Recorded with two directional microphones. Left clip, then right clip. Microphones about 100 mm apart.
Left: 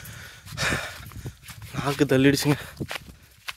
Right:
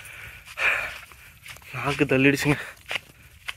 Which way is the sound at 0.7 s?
45° left (ahead or behind).